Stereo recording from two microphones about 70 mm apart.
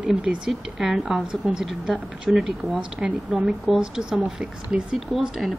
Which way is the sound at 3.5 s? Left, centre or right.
Centre.